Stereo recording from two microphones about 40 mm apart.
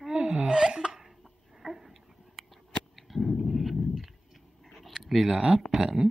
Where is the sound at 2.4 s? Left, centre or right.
Centre.